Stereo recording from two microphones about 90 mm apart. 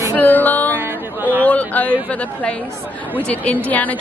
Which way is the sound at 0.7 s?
25° right (ahead or behind).